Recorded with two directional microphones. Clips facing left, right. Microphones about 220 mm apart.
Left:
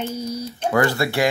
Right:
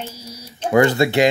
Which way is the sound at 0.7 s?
20° right (ahead or behind).